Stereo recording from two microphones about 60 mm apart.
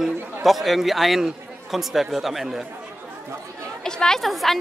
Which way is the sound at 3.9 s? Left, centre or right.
Centre.